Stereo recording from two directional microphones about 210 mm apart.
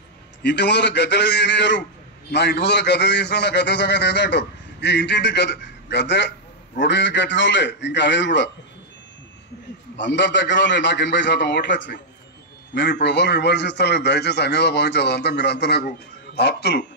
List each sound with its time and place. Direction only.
0.4 s a man's voice: 55° left (ahead or behind)
9.9 s a man's voice: 60° left (ahead or behind)